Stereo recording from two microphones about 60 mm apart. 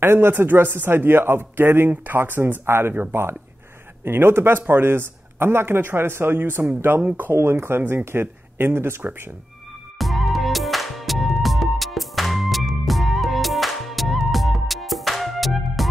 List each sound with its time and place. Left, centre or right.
0.0 s speech: right
9.9 s music: centre